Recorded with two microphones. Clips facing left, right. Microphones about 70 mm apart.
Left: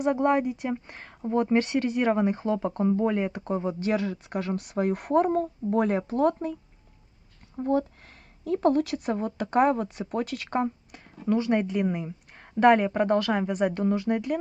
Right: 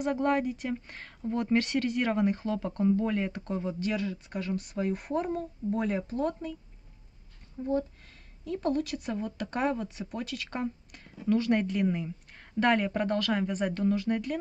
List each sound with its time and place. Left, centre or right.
0.0 s speech: centre
3.8 s speech: left
4.6 s speech: left
7.5 s speech: left
10.5 s a sound: left
11.2 s a woman's voice: centre
13.5 s speech: centre
13.7 s speech: left